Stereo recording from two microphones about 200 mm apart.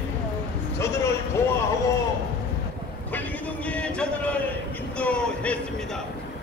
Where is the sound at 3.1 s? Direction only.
5° left (ahead or behind).